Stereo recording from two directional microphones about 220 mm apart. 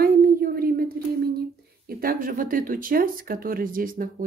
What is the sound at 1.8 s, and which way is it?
Speech, 40° right (ahead or behind).